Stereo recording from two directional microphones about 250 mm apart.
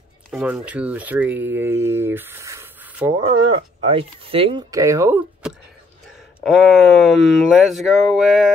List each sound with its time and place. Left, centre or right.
0.3 s speech: centre
3.8 s speech: right
6.4 s speech: centre